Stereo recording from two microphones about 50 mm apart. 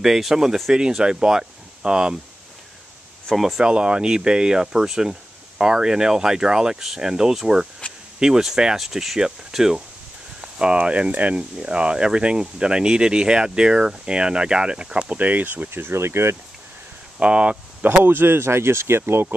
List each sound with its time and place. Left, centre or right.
0.0 s speech: centre
3.3 s speech: centre
3.6 s speech: centre
7.8 s a sound: left
8.2 s speech: centre; by 11.4 s right
11.5 s speech: centre
15.0 s speech: right
15.7 s speech: right
17.2 s speech: centre
18.0 s speech: right